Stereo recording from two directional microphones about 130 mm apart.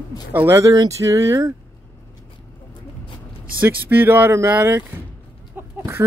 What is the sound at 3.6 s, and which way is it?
Speech, 15° right (ahead or behind).